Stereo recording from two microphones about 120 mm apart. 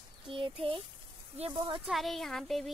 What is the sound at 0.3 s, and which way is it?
Speech, 45° right (ahead or behind).